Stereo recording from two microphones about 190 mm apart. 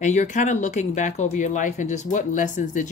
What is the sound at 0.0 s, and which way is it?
Speech, 40° left (ahead or behind).